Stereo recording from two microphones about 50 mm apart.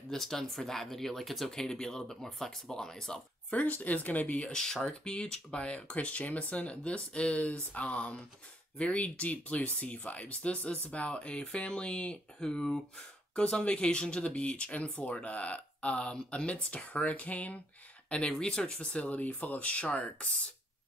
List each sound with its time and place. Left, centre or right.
0.1 s speech: centre
1.5 s speech: centre
3.4 s speech: left
4.5 s speech: centre
13.4 s speech: left
18.3 s speech: centre